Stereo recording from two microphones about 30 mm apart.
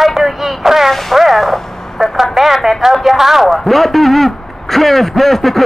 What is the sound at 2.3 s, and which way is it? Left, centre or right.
A man's voice, centre.